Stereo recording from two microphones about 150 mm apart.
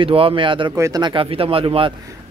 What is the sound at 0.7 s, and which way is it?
Speech, 25° right (ahead or behind).